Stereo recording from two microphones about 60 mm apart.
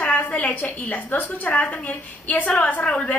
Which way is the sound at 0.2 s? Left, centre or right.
Left.